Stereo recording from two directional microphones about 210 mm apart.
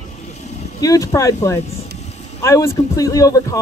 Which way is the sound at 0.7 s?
15° left (ahead or behind).